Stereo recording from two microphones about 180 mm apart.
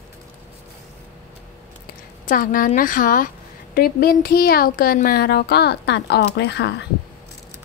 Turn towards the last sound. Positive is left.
turn(degrees=70)  # may be behind; listen again after turning